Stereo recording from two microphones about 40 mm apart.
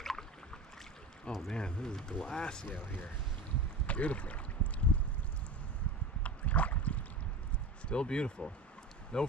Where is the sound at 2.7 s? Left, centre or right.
Left.